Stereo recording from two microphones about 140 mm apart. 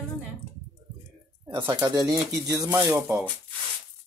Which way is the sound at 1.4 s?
35° right (ahead or behind).